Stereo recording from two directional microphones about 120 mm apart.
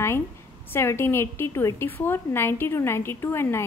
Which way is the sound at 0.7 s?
20° left (ahead or behind).